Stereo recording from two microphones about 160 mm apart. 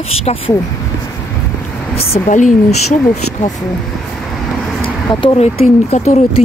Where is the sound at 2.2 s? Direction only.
50° left (ahead or behind).